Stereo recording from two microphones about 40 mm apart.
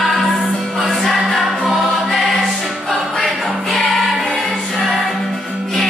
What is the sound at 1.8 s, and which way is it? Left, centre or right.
Music, centre.